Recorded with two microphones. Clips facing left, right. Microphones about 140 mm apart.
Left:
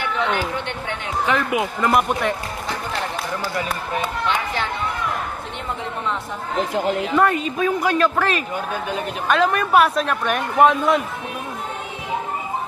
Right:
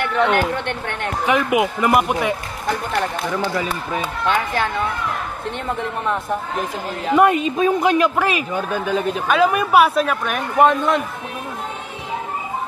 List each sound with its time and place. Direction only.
0.0 s speech: 55° right (ahead or behind)
1.2 s speech: 15° right (ahead or behind)
7.2 s a man's voice: 20° right (ahead or behind); by 11.0 s centre (ahead or behind)